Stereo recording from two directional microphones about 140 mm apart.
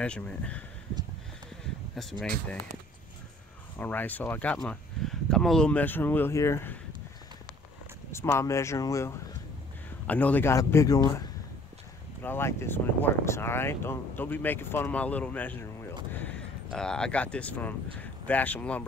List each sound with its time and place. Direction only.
0.0 s speech: 5° left (ahead or behind)
2.0 s speech: centre (ahead or behind)
3.7 s speech: 15° left (ahead or behind)
8.1 s a man's voice: 20° left (ahead or behind)
10.0 s a man's voice: 10° left (ahead or behind)